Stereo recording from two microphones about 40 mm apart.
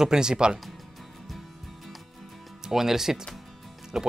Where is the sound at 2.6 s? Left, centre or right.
Centre.